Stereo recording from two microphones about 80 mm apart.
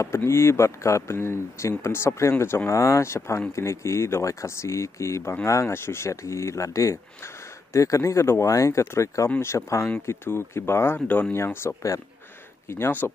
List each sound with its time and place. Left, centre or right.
0.0 s speech: left
11.3 s speech: left